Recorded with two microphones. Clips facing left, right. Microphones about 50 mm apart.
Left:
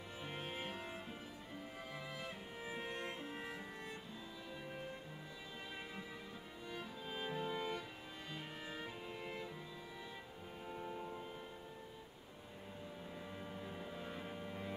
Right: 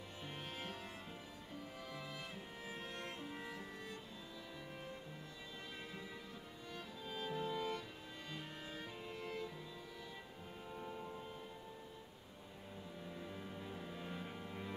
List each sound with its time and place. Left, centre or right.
0.2 s music: centre
2.6 s music: centre
6.7 s music: centre
10.7 s music: centre
13.1 s music: centre